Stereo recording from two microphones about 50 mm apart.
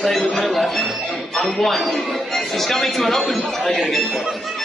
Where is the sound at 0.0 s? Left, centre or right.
Centre.